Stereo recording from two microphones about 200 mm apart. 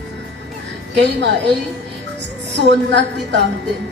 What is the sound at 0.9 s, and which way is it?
Speech, 60° right (ahead or behind).